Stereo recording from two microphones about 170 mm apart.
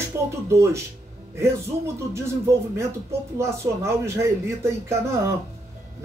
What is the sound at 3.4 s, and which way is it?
Speech, 15° right (ahead or behind).